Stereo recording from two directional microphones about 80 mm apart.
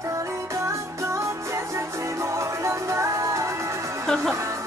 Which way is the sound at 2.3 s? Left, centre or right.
Right.